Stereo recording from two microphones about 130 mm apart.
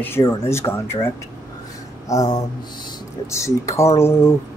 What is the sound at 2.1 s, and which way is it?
Speech, 30° left (ahead or behind).